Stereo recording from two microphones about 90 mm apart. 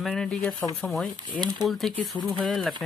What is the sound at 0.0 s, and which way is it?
Speech, 5° left (ahead or behind).